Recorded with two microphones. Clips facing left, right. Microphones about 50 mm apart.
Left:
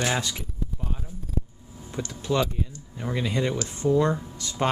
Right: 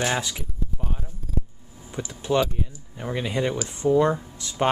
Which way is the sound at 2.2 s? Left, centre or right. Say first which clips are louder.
Right 3 dB; right.